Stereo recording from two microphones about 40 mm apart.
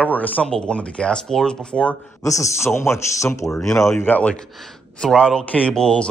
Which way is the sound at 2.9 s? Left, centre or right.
Left.